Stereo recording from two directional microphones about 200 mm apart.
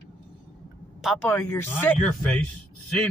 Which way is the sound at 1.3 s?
10° left (ahead or behind).